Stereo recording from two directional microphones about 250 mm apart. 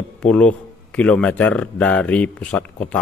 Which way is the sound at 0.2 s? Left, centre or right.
Centre.